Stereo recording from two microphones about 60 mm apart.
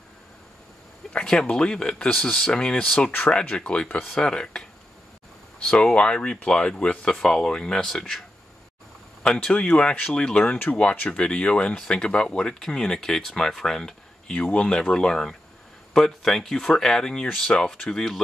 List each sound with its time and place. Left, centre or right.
1.1 s speech: centre
9.2 s speech: centre